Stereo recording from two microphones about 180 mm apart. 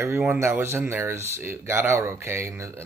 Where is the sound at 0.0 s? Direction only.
15° right (ahead or behind).